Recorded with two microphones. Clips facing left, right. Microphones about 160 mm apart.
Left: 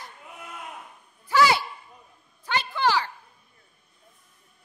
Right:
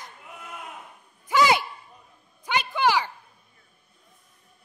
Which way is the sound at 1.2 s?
20° right (ahead or behind).